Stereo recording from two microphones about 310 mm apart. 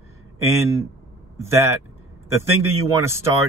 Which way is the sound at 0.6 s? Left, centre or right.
Centre.